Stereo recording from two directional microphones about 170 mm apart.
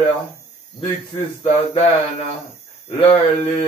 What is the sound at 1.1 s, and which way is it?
Speech, 35° left (ahead or behind).